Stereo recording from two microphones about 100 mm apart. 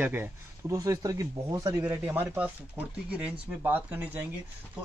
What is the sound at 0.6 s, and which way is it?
A man's voice, 35° right (ahead or behind).